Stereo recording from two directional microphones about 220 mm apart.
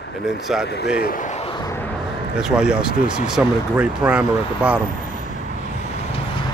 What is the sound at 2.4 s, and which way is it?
Speech, 5° right (ahead or behind).